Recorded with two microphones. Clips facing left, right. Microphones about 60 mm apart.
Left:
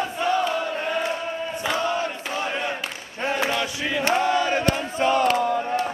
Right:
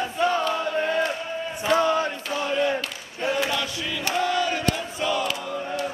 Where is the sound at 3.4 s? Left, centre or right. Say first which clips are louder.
Left 2 dB; left.